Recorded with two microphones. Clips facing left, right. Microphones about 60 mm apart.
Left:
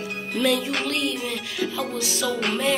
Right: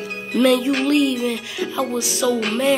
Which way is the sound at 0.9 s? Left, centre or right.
Centre.